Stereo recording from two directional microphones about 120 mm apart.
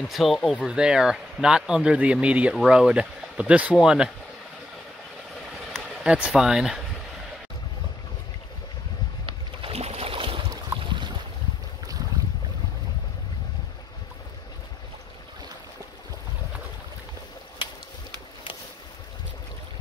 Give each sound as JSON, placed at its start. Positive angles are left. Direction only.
{"t": 0.1, "sound": "speech", "side_deg": 0}
{"t": 5.7, "sound": "speech", "side_deg": -5}
{"t": 9.2, "sound": "boat", "side_deg": -50}